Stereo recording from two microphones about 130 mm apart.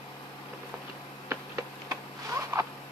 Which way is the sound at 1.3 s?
20° right (ahead or behind).